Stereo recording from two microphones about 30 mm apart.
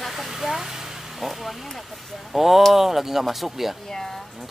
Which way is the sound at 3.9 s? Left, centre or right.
Centre.